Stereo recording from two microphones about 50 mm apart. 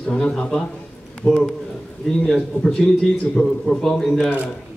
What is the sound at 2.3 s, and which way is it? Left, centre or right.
A man's voice, centre.